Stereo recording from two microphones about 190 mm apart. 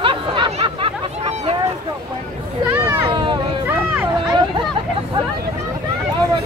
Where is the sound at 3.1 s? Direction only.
25° right (ahead or behind).